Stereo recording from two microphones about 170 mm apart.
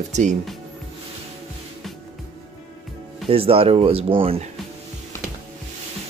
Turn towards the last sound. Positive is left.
turn(degrees=-35)  # may be behind; listen again after turning